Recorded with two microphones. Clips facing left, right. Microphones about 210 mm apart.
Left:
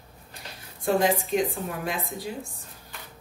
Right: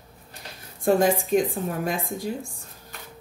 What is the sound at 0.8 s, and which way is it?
A woman's voice, 50° right (ahead or behind).